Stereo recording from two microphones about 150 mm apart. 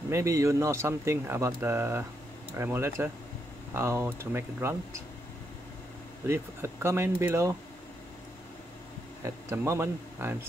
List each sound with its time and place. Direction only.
0.1 s speech: 20° right (ahead or behind)
6.2 s speech: 15° right (ahead or behind)
9.2 s speech: 20° right (ahead or behind)